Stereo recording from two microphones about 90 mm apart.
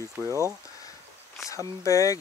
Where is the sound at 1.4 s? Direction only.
35° left (ahead or behind).